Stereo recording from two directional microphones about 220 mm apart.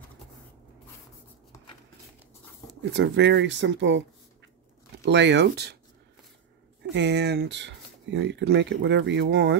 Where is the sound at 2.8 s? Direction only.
55° right (ahead or behind).